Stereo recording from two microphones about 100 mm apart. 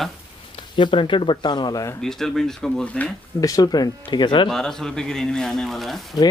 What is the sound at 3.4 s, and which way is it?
Speech, 40° left (ahead or behind).